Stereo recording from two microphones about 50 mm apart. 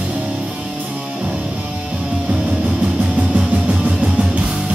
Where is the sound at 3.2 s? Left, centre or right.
Right.